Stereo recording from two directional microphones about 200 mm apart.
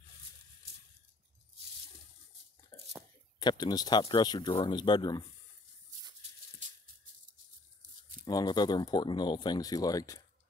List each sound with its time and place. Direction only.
2.7 s a sound: 15° left (ahead or behind)
3.3 s speech: 20° left (ahead or behind)
8.3 s speech: 20° left (ahead or behind)